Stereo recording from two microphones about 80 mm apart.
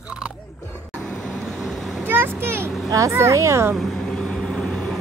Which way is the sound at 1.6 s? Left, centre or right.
Centre.